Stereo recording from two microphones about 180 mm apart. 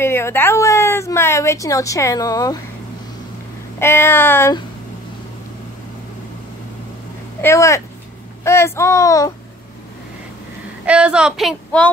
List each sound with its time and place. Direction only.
0.0 s a woman's voice: 15° left (ahead or behind)
3.8 s a woman's voice: 15° left (ahead or behind)
7.4 s a woman's voice: 15° left (ahead or behind)
10.9 s speech: 5° right (ahead or behind)